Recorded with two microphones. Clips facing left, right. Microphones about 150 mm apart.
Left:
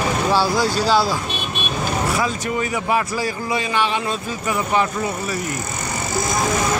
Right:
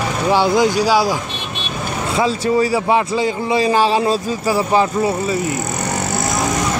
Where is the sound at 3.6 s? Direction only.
35° right (ahead or behind).